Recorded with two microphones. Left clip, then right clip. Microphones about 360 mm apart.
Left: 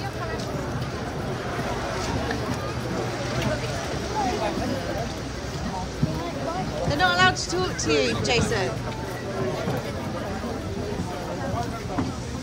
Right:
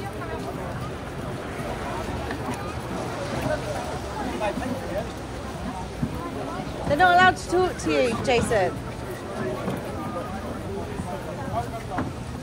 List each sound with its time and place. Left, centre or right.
6.9 s speech: centre